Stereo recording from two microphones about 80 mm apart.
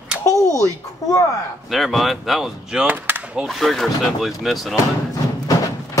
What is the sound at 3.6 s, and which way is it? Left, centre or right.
Speech, centre.